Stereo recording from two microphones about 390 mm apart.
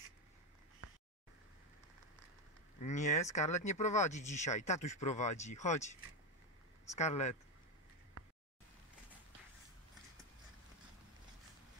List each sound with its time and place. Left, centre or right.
2.8 s speech: centre
6.9 s speech: centre